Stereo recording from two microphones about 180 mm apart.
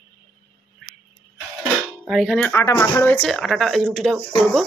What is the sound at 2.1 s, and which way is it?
A woman's voice, centre (ahead or behind).